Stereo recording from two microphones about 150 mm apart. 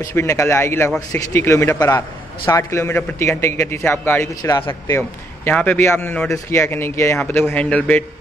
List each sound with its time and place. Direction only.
0.0 s a man's voice: 20° left (ahead or behind)